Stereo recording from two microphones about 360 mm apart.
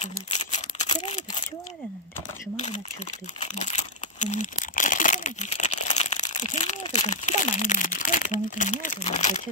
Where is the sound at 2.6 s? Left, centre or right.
Centre.